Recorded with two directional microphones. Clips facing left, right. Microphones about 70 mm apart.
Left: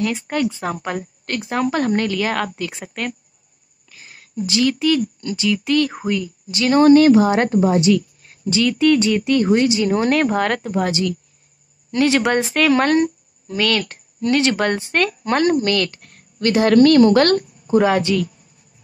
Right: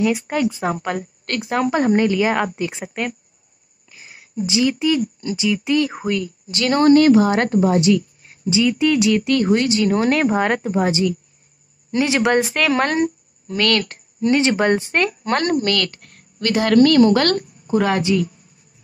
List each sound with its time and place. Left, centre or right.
0.0 s a woman's voice: centre
6.0 s speech: centre
6.8 s speech: left
7.4 s speech: centre
8.2 s speech: centre
10.3 s a woman's voice: centre
14.2 s speech: right
15.2 s speech: centre
15.6 s speech: centre
16.3 s a woman's voice: left
18.0 s a woman's voice: centre